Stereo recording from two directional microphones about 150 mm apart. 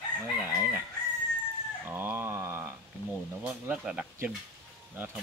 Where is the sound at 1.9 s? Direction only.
15° right (ahead or behind).